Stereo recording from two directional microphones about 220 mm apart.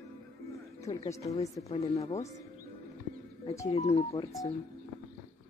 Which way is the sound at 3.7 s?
30° left (ahead or behind).